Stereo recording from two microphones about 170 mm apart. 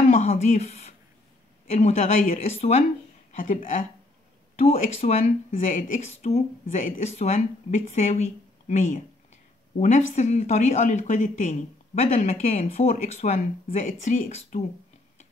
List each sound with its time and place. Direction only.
0.1 s a sound: 40° left (ahead or behind)
1.7 s speech: 45° left (ahead or behind)
2.4 s speech: 40° left (ahead or behind)
3.3 s speech: 50° left (ahead or behind)
12.6 s speech: 40° left (ahead or behind)